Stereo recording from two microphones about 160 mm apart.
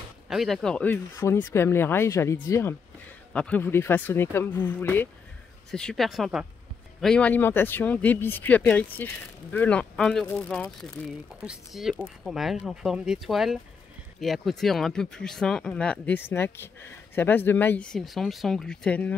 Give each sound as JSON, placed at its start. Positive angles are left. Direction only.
{"t": 0.3, "sound": "speech", "side_deg": 0}
{"t": 1.1, "sound": "speech", "side_deg": 15}